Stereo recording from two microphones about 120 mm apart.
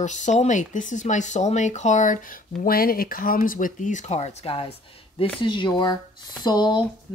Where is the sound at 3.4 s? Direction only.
90° left; by 4.7 s 50° left (ahead or behind).